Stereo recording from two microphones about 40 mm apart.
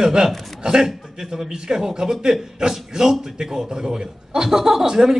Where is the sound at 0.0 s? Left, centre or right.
Centre.